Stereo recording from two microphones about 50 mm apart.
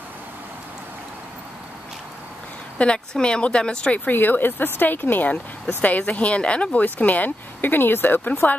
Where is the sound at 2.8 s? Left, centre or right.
Centre.